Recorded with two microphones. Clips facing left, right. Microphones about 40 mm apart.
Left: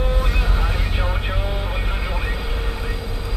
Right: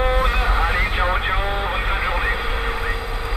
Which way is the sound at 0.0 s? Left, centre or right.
Right.